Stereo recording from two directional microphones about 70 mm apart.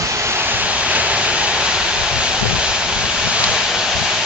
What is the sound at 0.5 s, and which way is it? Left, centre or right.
Vehicle, right.